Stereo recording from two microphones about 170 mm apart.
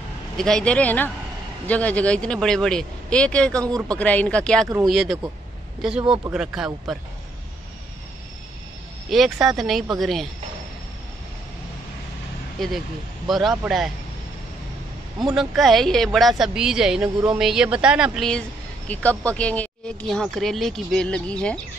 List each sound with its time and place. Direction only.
0.4 s a man's voice: 5° left (ahead or behind)
5.9 s speech: 30° right (ahead or behind)
6.3 s speech: 5° right (ahead or behind)
9.1 s speech: centre (ahead or behind)
12.5 s speech: centre (ahead or behind)
15.2 s speech: centre (ahead or behind)